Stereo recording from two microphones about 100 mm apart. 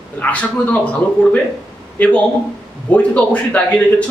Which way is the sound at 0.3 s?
15° left (ahead or behind).